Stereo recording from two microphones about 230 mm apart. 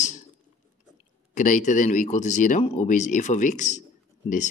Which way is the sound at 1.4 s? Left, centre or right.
Left.